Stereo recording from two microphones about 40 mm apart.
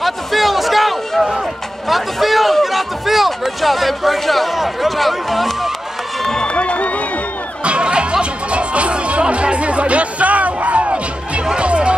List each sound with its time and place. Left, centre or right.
0.0 s a sound: centre
6.4 s crowd: left
7.6 s music: right